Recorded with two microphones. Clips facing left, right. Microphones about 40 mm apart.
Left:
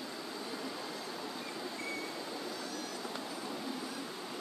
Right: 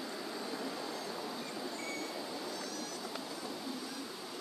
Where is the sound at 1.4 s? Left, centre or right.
Centre.